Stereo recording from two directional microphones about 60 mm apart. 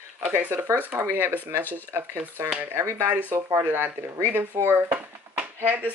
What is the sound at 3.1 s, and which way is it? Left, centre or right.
Speech, right.